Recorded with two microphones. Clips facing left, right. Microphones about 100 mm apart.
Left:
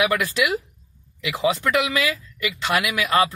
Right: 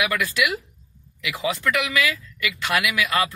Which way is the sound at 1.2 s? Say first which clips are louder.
Left 3 dB; 30° left (ahead or behind).